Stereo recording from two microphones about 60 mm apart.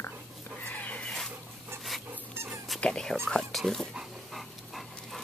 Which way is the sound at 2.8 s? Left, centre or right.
Centre.